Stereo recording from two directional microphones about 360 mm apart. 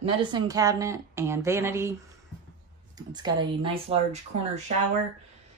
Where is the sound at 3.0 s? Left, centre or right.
Centre.